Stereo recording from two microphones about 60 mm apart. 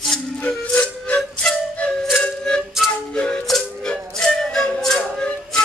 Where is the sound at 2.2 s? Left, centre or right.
Centre.